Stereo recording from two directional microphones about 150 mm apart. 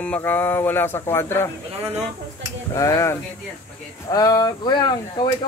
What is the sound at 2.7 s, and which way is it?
Speech, 20° left (ahead or behind).